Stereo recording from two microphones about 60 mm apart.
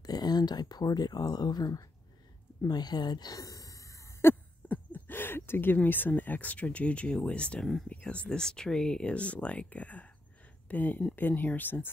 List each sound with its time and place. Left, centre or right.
0.0 s speech: left
2.9 s speech: left
3.3 s gasp: left
4.2 s a sound: left
5.8 s speech: left
8.4 s speech: centre; by 11.9 s left